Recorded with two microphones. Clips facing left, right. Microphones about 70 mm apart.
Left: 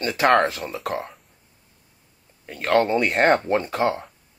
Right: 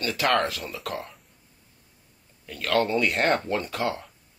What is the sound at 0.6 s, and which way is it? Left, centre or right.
Speech, left.